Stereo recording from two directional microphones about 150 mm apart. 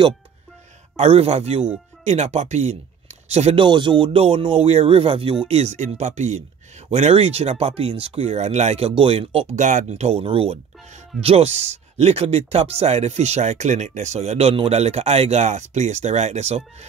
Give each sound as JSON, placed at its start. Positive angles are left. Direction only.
{"t": 0.9, "sound": "speech", "side_deg": -45}
{"t": 3.6, "sound": "speech", "side_deg": -30}
{"t": 5.5, "sound": "speech", "side_deg": -50}
{"t": 9.7, "sound": "speech", "side_deg": -50}